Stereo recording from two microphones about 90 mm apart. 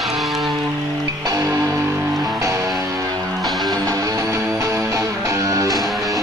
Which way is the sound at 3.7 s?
40° right (ahead or behind).